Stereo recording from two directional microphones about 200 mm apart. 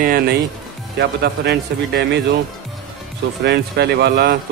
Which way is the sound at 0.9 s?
55° right (ahead or behind).